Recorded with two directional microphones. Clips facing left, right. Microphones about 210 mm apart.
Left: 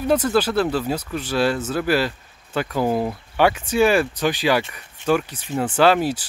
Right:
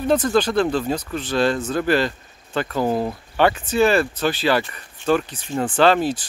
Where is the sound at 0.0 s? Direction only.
10° left (ahead or behind).